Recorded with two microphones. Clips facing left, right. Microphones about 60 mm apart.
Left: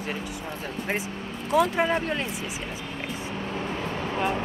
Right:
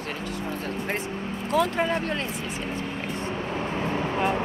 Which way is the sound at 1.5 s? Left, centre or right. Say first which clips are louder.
Left 2 dB; centre.